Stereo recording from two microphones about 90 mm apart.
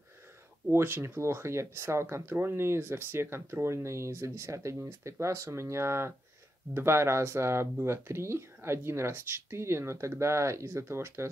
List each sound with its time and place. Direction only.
0.7 s speech: 25° right (ahead or behind)